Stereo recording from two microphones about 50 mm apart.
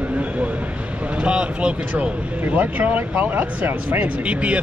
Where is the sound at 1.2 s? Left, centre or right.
Centre.